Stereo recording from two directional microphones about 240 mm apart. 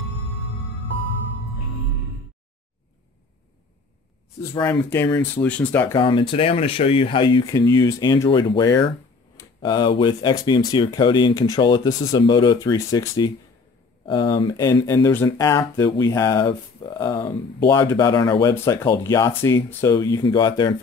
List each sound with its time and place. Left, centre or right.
4.6 s speech: centre